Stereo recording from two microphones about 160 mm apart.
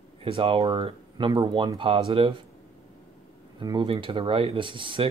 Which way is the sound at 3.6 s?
30° right (ahead or behind).